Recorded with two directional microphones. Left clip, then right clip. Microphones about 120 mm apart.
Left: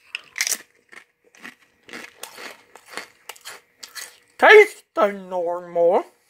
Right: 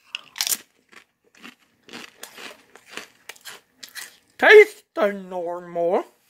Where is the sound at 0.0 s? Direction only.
20° right (ahead or behind).